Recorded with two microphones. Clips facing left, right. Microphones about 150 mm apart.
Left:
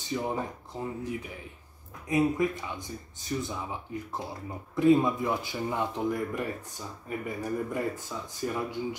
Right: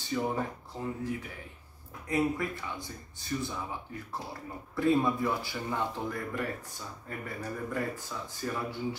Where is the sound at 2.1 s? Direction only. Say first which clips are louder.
Left 4 dB; 15° left (ahead or behind).